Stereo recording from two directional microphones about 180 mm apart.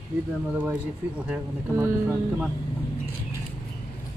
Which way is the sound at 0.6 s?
10° right (ahead or behind).